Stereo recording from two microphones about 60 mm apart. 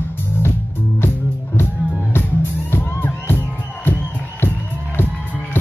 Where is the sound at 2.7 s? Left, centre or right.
Left.